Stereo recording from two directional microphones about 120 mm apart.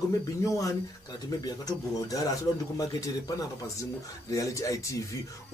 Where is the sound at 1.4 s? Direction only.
30° left (ahead or behind).